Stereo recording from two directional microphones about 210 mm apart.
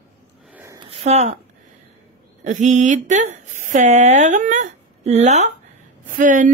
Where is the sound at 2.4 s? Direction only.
35° right (ahead or behind).